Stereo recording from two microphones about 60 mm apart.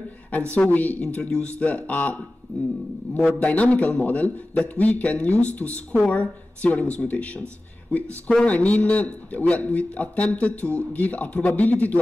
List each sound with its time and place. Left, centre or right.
0.3 s a man's voice: left
3.3 s a man's voice: left
8.5 s a man's voice: left